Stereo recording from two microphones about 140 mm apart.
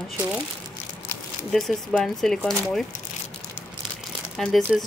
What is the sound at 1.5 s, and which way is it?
Speech, 5° left (ahead or behind).